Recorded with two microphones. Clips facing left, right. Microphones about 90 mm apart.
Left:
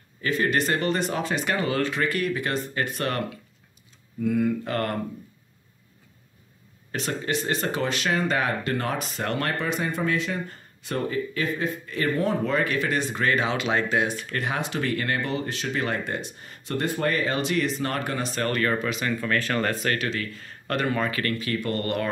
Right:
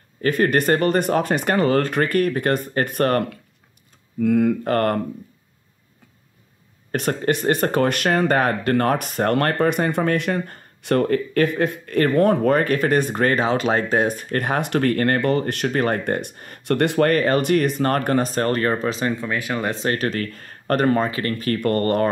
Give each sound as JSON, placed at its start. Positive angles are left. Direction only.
{"t": 0.2, "sound": "speech", "side_deg": -50}
{"t": 6.9, "sound": "speech", "side_deg": -50}
{"t": 19.2, "sound": "speech", "side_deg": -10}
{"t": 20.0, "sound": "speech", "side_deg": -50}
{"t": 21.1, "sound": "speech", "side_deg": -30}
{"t": 21.4, "sound": "speech", "side_deg": -50}